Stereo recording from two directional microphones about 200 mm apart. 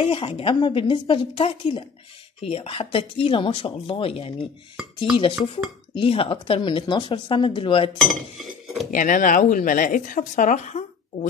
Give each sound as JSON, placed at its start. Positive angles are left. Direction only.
{"t": 0.0, "sound": "speech", "side_deg": 25}
{"t": 8.0, "sound": "chink", "side_deg": 0}
{"t": 8.9, "sound": "speech", "side_deg": 40}